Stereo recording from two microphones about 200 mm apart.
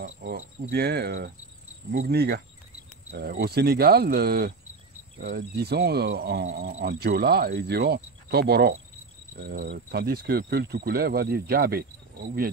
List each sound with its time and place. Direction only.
0.0 s speech: 40° right (ahead or behind)